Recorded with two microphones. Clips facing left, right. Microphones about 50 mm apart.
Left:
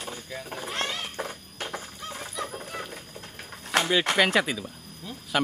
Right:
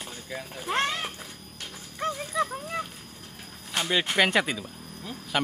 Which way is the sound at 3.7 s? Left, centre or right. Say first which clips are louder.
Left 6 dB; left.